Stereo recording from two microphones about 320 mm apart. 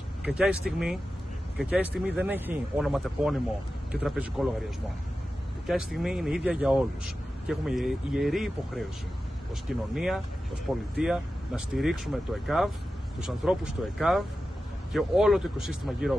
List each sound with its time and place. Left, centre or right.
0.2 s speech: centre
5.7 s speech: centre
9.9 s speech: centre